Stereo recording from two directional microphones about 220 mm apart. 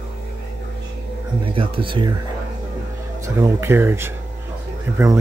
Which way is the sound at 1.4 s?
25° right (ahead or behind).